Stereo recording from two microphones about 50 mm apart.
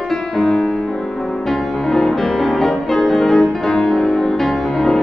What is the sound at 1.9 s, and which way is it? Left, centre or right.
Music, centre.